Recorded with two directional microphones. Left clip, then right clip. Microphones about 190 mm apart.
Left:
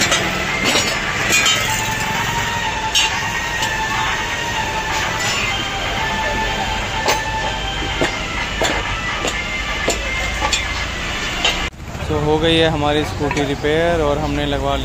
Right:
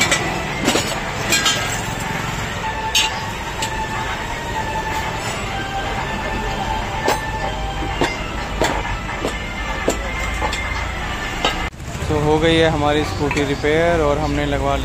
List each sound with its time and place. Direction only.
12.3 s speech: centre (ahead or behind)